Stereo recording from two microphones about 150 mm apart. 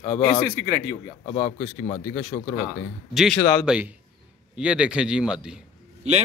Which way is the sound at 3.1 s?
Centre (ahead or behind).